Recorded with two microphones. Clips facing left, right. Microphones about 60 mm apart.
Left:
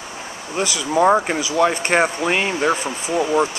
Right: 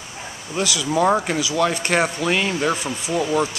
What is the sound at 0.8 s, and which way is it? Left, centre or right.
Speech, centre.